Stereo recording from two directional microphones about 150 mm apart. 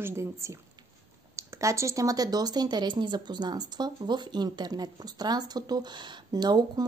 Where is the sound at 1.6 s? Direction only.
20° right (ahead or behind).